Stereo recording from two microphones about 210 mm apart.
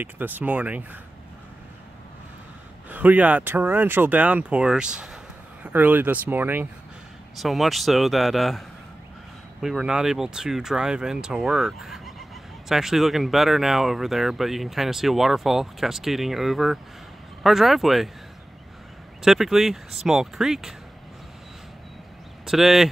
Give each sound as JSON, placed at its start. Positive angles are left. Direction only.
{"t": 0.0, "sound": "speech", "side_deg": -10}
{"t": 2.9, "sound": "speech", "side_deg": -10}
{"t": 19.2, "sound": "speech", "side_deg": 0}
{"t": 22.5, "sound": "speech", "side_deg": 0}